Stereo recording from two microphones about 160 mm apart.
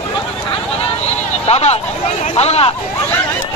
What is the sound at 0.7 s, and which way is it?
Vehicle, 40° left (ahead or behind).